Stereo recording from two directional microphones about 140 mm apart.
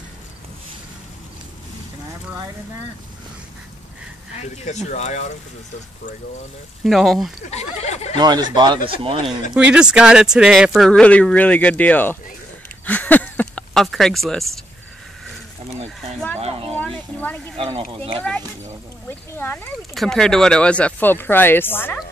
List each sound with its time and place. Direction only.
4.4 s speech: 55° left (ahead or behind)
6.8 s speech: centre (ahead or behind)
7.5 s speech: 55° left (ahead or behind)
8.2 s speech: 30° right (ahead or behind)
9.5 s speech: 5° right (ahead or behind)
10.9 s speech: 10° left (ahead or behind)
12.8 s a sound: 10° left (ahead or behind)
16.3 s a sound: 45° right (ahead or behind)
16.7 s a sound: 10° left (ahead or behind)
17.6 s speech: 45° right (ahead or behind)
19.0 s a sound: 15° left (ahead or behind)
19.9 s speech: centre (ahead or behind)